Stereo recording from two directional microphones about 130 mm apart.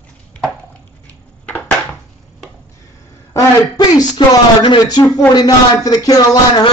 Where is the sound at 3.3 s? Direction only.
25° left (ahead or behind).